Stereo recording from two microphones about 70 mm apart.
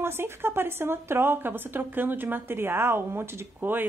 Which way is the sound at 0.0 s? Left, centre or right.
Right.